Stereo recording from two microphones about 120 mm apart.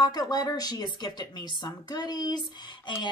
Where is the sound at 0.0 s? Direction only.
35° left (ahead or behind).